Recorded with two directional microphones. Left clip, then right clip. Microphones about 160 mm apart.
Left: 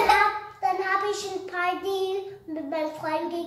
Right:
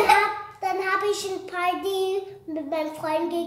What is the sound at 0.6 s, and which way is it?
Child singing, 30° right (ahead or behind).